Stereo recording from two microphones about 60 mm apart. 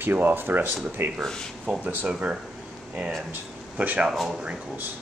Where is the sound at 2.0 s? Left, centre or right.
Centre.